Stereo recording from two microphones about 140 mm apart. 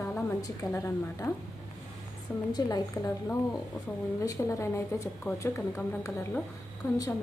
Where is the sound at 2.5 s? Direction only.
25° left (ahead or behind).